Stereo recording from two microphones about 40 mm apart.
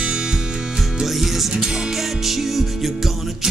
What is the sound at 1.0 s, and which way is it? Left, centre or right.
Music, centre.